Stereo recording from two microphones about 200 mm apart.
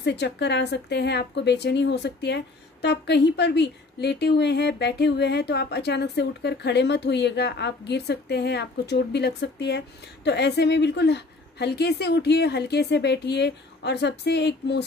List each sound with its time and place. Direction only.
0.0 s a woman's voice: 60° left (ahead or behind)